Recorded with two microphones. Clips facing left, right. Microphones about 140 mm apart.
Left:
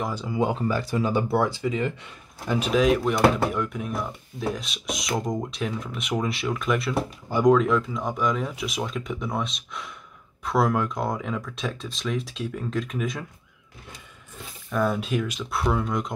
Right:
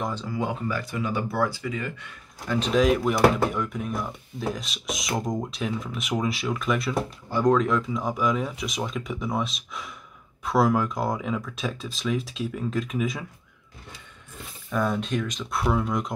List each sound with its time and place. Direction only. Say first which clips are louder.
0.0 s speech: left 1 dB; 10° left (ahead or behind)
0.3 s speech: left 7 dB; 25° left (ahead or behind)
2.6 s speech: even; centre (ahead or behind)
7.2 s speech: left 3 dB; 15° left (ahead or behind)
7.5 s speech: left 2 dB; centre (ahead or behind)
14.7 s speech: left 1 dB; centre (ahead or behind)